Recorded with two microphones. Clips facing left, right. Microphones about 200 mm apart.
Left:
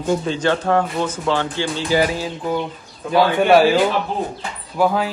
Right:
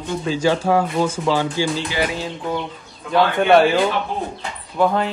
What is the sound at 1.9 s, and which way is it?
Speech, 45° left (ahead or behind).